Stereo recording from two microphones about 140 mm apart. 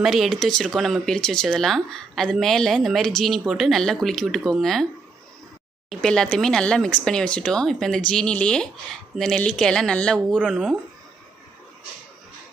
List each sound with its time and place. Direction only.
0.0 s speech: centre (ahead or behind)
5.9 s speech: 5° left (ahead or behind)